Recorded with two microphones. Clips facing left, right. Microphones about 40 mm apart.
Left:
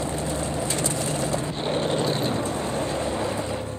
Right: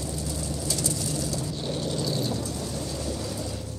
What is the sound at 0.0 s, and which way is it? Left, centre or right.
Vehicle, left.